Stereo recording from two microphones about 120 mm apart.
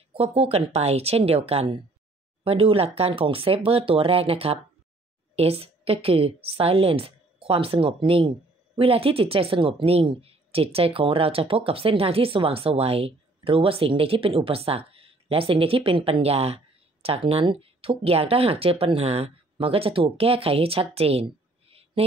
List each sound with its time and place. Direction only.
0.1 s a woman's voice: 55° right (ahead or behind)